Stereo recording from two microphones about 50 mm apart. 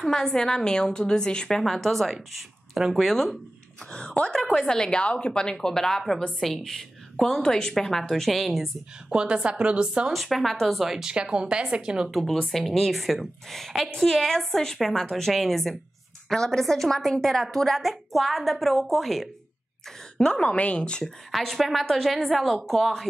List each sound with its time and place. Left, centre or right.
0.1 s a woman's voice: centre
1.6 s a woman's voice: centre
3.9 s a woman's voice: centre
9.1 s a woman's voice: centre
10.1 s a woman's voice: centre
11.1 s a woman's voice: centre
12.1 s a woman's voice: centre
20.2 s a woman's voice: centre
21.3 s a woman's voice: centre